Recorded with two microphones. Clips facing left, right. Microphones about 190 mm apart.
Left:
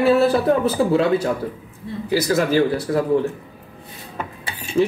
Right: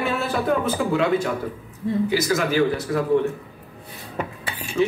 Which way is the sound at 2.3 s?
35° left (ahead or behind).